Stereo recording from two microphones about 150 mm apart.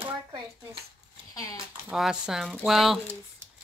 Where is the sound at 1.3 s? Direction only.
25° left (ahead or behind).